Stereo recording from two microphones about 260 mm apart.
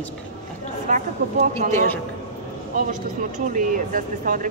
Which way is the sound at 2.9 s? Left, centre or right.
Right.